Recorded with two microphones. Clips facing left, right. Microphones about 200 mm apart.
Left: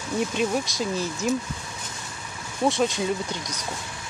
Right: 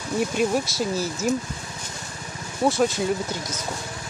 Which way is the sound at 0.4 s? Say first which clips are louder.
Right 2 dB; 5° right (ahead or behind).